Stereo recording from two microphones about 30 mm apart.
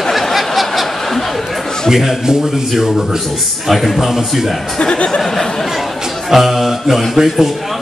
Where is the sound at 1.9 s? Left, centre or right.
Centre.